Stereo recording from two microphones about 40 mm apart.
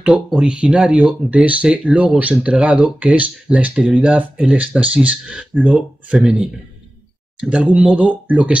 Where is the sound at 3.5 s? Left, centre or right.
Centre.